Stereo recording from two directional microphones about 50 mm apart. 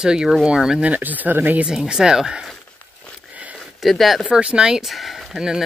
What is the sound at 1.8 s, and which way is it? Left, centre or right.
Speech, centre.